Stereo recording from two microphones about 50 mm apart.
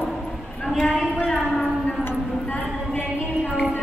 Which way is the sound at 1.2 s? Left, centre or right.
Centre.